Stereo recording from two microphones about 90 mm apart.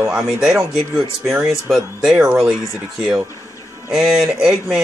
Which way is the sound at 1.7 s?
5° right (ahead or behind).